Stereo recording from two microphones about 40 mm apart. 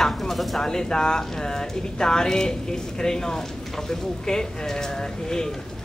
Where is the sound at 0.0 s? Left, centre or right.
Centre.